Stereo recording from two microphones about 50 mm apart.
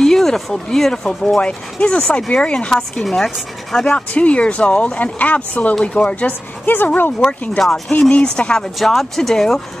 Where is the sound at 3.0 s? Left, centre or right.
Centre.